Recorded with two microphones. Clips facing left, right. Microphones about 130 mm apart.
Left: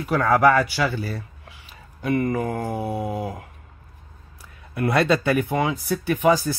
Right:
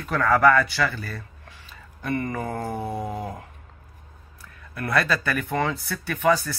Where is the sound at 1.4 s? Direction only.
10° left (ahead or behind).